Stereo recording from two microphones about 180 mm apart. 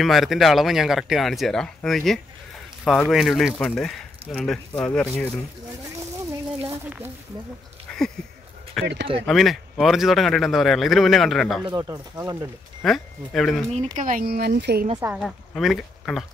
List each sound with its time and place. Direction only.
0.0 s speech: centre (ahead or behind)
6.6 s a sound: 10° right (ahead or behind)
8.8 s speech: centre (ahead or behind)
11.6 s speech: 20° right (ahead or behind)
12.8 s speech: centre (ahead or behind)
13.9 s speech: 50° right (ahead or behind)
15.0 s speech: 10° right (ahead or behind)
15.2 s speech: centre (ahead or behind)